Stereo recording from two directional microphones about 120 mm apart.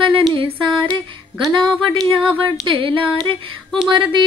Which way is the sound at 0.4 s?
45° right (ahead or behind).